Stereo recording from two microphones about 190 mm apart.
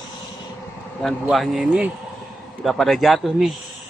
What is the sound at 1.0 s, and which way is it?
Speech, centre (ahead or behind).